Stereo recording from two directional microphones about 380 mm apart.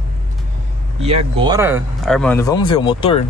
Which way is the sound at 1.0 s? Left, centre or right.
Centre.